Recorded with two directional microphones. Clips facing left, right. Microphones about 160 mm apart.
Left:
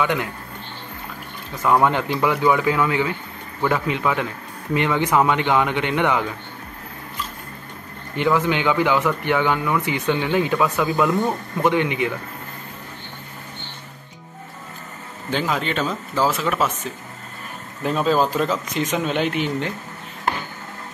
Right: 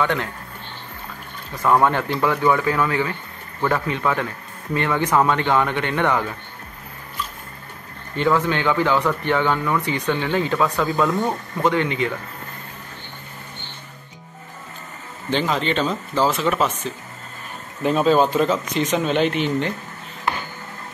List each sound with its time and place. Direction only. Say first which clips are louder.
0.0 s speech: even; 10° left (ahead or behind)
1.7 s speech: even; 15° left (ahead or behind)
8.2 s speech: even; 15° left (ahead or behind)
15.3 s speech: right 2 dB; 5° left (ahead or behind)